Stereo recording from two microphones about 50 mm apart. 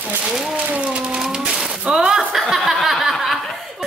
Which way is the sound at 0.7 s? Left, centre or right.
Right.